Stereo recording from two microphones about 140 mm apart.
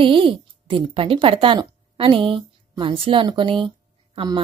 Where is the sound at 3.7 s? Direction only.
35° right (ahead or behind).